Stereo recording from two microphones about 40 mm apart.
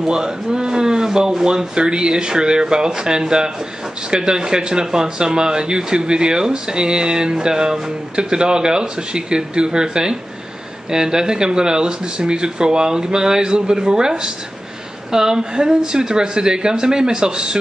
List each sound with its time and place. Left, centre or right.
0.0 s speech: centre